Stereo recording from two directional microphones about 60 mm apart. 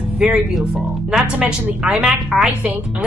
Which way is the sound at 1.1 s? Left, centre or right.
Centre.